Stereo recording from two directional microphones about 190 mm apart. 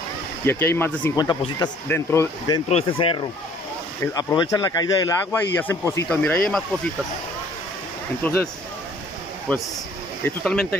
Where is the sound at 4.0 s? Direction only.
15° left (ahead or behind).